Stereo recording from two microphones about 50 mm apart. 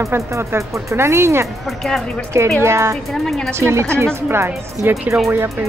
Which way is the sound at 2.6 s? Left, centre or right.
Right.